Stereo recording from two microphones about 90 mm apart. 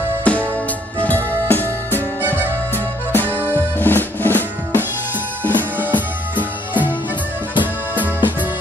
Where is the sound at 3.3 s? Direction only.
20° left (ahead or behind).